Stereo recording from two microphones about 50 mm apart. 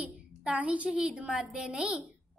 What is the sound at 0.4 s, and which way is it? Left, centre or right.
A child's voice, right.